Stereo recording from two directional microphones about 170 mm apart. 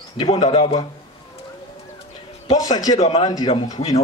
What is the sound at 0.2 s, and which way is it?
Speech, 30° left (ahead or behind).